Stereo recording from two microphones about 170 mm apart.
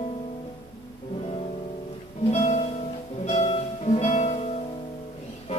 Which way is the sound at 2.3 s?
40° left (ahead or behind).